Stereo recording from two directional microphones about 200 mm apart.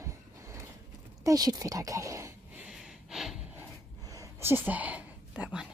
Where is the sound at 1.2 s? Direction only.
20° right (ahead or behind).